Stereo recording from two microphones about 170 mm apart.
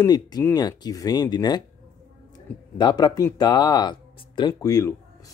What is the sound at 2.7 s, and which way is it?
Speech, 25° left (ahead or behind).